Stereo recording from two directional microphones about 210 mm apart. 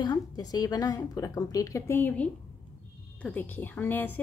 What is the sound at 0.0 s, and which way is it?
A woman's voice, 20° left (ahead or behind).